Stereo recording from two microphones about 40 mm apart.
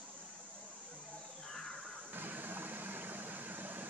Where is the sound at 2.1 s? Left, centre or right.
Right.